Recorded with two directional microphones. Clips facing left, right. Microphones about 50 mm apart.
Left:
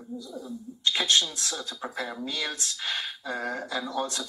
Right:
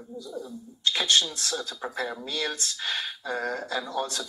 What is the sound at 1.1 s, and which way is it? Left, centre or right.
Speech, centre.